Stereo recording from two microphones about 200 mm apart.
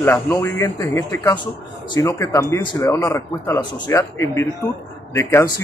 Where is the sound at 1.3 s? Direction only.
20° left (ahead or behind).